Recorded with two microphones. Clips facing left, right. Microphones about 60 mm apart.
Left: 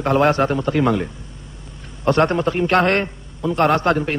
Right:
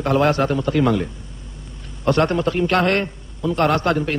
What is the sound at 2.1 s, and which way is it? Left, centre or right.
A man's voice, left.